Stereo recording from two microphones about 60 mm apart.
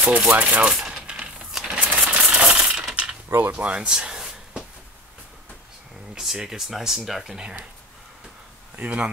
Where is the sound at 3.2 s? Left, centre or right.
Right.